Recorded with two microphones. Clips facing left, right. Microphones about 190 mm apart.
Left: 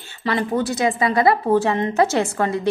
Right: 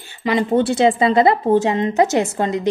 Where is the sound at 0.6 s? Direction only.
30° right (ahead or behind).